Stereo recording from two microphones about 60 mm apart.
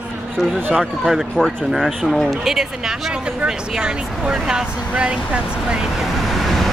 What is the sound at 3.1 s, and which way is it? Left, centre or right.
Speech, centre.